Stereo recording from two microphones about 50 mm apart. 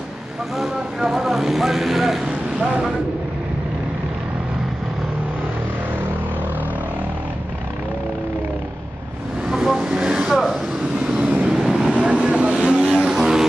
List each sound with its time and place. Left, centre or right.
0.6 s speech: centre
9.5 s vehicle: centre
11.0 s vehicle: right
11.5 s vehicle: centre
12.2 s vehicle: centre